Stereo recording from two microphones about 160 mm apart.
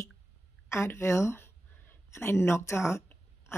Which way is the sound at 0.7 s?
15° left (ahead or behind).